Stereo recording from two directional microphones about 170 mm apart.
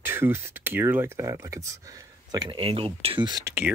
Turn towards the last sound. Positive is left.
turn(degrees=-15)  # may be behind; listen again after turning